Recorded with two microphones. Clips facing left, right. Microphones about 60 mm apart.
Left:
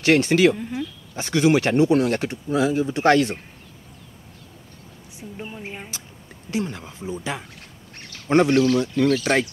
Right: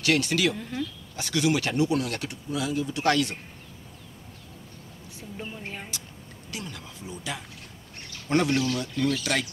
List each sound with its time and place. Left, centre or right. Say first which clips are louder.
0.0 s speech: left 8 dB; left
0.6 s speech: left 3 dB; centre
1.1 s speech: left 7 dB; left
5.4 s speech: left 3 dB; centre
6.5 s speech: left 11 dB; left